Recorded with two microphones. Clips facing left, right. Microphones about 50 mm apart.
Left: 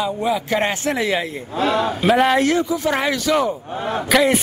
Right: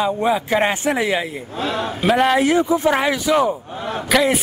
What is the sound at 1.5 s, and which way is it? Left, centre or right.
Speech, left.